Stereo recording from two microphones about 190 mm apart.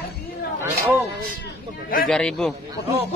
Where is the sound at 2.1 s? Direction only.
5° left (ahead or behind).